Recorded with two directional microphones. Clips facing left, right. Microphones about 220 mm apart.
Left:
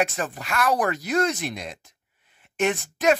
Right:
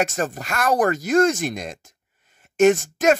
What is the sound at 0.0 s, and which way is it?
Speech, 45° right (ahead or behind).